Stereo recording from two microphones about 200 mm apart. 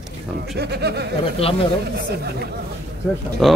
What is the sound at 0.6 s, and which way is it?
Speech, 55° right (ahead or behind).